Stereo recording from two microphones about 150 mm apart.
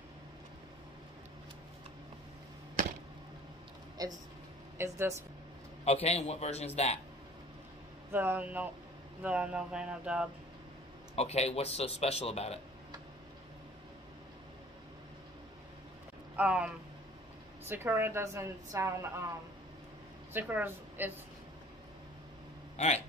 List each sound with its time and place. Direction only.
4.7 s a woman's voice: 15° right (ahead or behind)
5.9 s a man's voice: 45° left (ahead or behind)
8.1 s a woman's voice: 15° right (ahead or behind)
11.1 s a man's voice: 45° left (ahead or behind)
16.3 s a woman's voice: 10° right (ahead or behind)
20.3 s a woman's voice: 15° right (ahead or behind)
22.8 s a man's voice: 50° left (ahead or behind)